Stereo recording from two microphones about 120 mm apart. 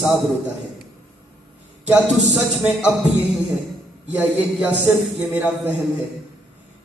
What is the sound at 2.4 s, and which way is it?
Speech, 5° right (ahead or behind).